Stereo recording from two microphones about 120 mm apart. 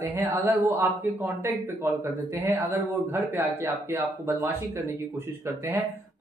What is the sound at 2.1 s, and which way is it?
A man's voice, 15° right (ahead or behind).